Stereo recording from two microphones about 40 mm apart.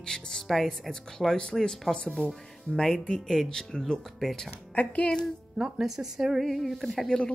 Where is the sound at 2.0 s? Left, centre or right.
Left.